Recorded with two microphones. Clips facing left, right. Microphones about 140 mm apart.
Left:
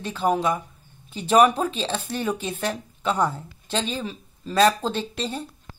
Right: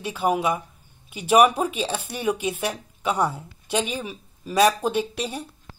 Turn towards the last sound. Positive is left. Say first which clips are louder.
# right 2 dB
turn(degrees=-15)  # may be behind; listen again after turning